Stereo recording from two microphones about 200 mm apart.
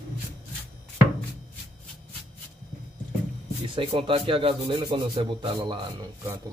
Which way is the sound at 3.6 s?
25° right (ahead or behind).